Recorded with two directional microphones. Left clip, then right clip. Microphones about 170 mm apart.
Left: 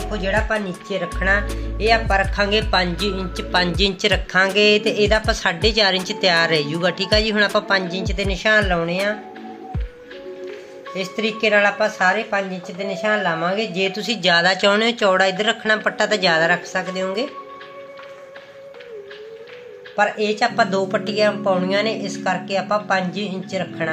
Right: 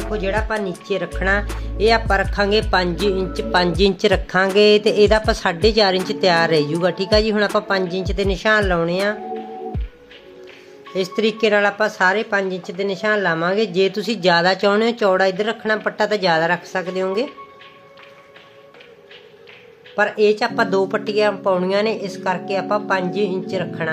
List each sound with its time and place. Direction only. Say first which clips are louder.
0.3 s speech: left 3 dB; 30° right (ahead or behind)
1.2 s a woman's voice: left 3 dB; 50° right (ahead or behind)
11.0 s a woman's voice: right 3 dB; 60° right (ahead or behind); by 17.3 s 35° right (ahead or behind)
20.0 s speech: right 2 dB; 45° right (ahead or behind)